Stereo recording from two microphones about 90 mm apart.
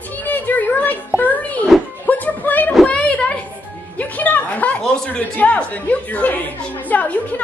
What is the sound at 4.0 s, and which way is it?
Speech, 20° left (ahead or behind).